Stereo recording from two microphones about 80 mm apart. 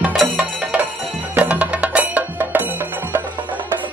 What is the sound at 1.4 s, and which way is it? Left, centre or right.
Music, centre.